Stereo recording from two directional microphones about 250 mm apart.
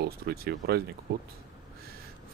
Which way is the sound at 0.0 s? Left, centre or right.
Right.